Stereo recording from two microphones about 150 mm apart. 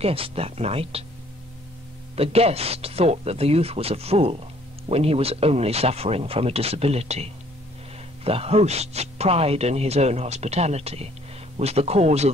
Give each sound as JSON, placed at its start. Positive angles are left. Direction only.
{"t": 0.0, "sound": "speech", "side_deg": -40}
{"t": 2.1, "sound": "speech", "side_deg": -40}